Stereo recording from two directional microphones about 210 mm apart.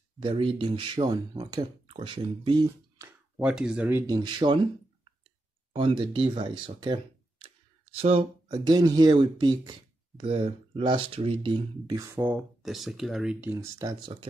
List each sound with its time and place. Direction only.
0.2 s speech: 25° right (ahead or behind)
3.3 s speech: 5° right (ahead or behind)
4.1 s speech: 20° right (ahead or behind)
5.7 s speech: 25° right (ahead or behind)